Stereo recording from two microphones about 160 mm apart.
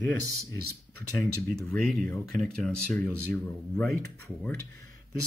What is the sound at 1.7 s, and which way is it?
Speech, centre (ahead or behind).